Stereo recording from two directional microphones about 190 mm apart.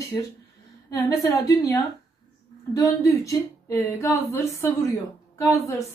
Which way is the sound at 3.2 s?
15° left (ahead or behind).